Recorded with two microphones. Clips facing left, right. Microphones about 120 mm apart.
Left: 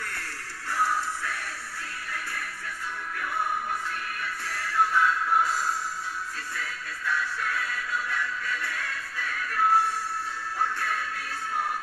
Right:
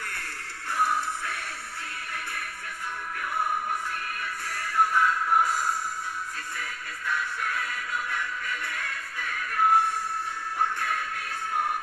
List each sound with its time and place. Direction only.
0.0 s music: 15° right (ahead or behind)
4.5 s music: 15° right (ahead or behind)